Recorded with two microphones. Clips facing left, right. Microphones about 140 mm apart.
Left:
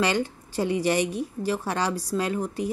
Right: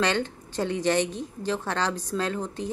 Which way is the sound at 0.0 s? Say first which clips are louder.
Left 1 dB; 10° left (ahead or behind).